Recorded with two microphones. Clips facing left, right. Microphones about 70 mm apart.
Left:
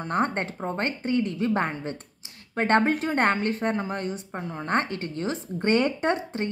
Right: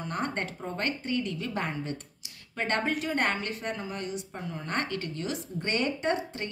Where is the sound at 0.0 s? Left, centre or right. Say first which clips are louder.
Left 6 dB; left.